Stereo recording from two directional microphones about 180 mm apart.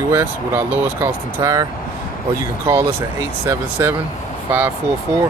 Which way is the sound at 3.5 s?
15° right (ahead or behind).